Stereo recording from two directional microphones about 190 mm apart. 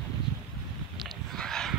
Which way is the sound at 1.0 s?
5° left (ahead or behind).